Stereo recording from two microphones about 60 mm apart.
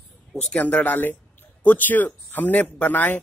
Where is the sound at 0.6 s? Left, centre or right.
Left.